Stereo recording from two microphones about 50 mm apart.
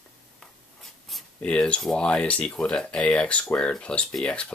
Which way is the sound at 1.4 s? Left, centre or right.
Left.